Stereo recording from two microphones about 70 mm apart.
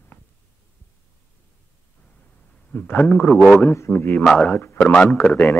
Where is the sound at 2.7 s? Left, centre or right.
Left.